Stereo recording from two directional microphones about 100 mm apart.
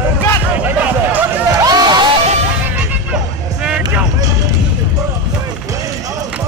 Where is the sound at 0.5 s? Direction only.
15° right (ahead or behind).